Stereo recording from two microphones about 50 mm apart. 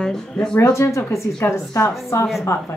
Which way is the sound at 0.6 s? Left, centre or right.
Left.